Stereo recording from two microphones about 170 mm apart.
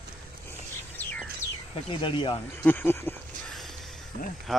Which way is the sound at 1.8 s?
30° left (ahead or behind).